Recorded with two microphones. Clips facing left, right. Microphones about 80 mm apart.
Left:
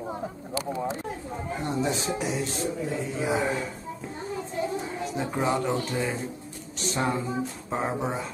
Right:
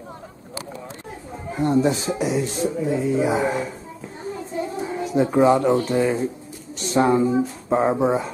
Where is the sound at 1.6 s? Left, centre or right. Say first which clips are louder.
Right 10 dB; centre.